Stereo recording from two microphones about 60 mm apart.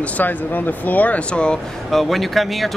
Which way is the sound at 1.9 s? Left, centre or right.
Centre.